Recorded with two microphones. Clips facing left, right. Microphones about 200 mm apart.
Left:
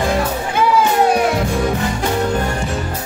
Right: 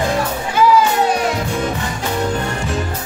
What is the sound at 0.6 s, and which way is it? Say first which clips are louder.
Music: right 1 dB; 55° left (ahead or behind).